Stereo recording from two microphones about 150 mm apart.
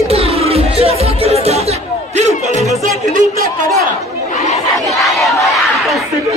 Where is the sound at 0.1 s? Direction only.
40° right (ahead or behind).